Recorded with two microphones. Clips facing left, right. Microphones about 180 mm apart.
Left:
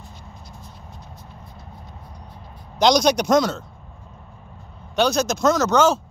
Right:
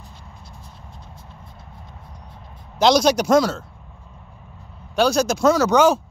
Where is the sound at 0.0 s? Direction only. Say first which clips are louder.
Left 1 dB; 30° right (ahead or behind).